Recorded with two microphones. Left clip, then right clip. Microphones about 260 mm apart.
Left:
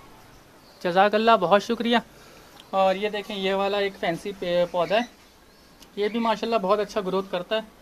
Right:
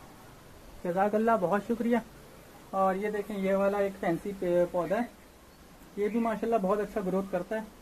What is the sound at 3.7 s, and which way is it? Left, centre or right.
Speech, left.